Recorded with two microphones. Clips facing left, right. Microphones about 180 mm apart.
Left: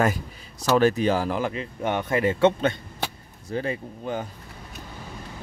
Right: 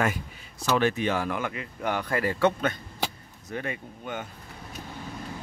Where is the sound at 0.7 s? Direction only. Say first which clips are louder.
Left 5 dB; 40° left (ahead or behind).